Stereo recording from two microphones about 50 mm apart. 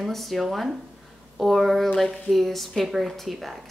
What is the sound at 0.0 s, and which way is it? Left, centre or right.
Speech, centre.